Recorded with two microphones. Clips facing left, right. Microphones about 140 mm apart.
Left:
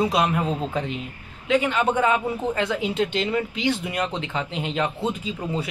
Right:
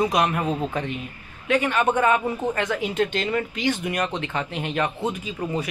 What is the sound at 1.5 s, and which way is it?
Speech, 10° left (ahead or behind).